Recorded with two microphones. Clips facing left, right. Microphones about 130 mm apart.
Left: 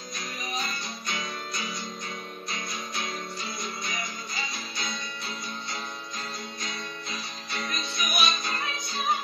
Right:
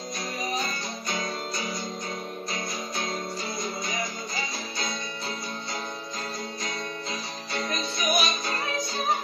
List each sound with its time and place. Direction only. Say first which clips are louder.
1.0 s music: right 4 dB; 35° right (ahead or behind)
6.6 s music: right 4 dB; 35° right (ahead or behind)